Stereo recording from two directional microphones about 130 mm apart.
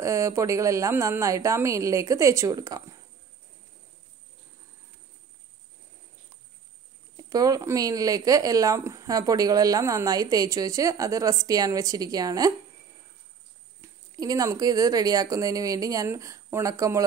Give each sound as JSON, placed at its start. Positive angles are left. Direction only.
{"t": 0.0, "sound": "a woman's voice", "side_deg": -25}
{"t": 7.2, "sound": "a woman's voice", "side_deg": -30}
{"t": 13.7, "sound": "a woman's voice", "side_deg": -25}